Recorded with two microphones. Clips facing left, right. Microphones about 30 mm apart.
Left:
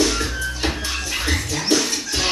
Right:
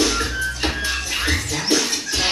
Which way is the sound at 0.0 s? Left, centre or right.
Right.